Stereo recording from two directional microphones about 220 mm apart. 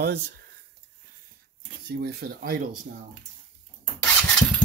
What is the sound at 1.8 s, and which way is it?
Speech, 45° right (ahead or behind).